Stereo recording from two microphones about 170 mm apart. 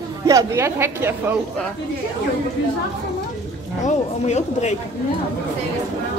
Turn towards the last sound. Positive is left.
turn(degrees=40)  # may be behind; listen again after turning